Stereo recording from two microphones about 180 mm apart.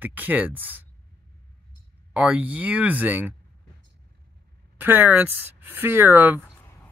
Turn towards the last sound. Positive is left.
turn(degrees=-10)  # may be behind; listen again after turning